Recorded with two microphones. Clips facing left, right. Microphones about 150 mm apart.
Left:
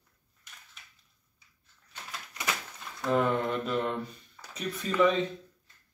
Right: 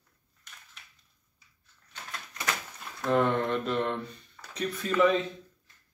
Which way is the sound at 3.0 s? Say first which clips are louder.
Right 1 dB; 5° left (ahead or behind).